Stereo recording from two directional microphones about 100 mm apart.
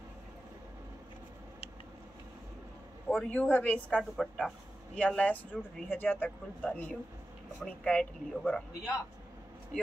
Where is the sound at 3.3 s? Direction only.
15° left (ahead or behind).